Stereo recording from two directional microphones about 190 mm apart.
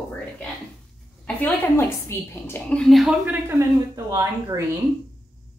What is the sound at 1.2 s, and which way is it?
A woman's voice, 10° left (ahead or behind).